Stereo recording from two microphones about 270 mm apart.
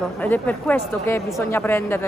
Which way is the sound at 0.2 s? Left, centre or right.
Centre.